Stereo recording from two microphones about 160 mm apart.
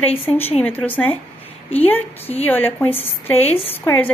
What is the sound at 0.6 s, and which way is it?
A woman's voice, 10° left (ahead or behind).